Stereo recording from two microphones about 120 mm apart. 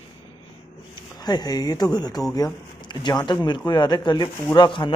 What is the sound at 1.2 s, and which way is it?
Speech, 35° left (ahead or behind).